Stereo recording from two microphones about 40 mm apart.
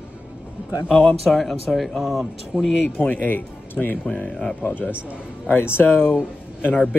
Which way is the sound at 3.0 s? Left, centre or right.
Left.